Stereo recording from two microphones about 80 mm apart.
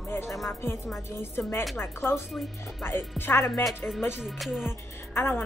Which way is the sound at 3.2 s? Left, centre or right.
Left.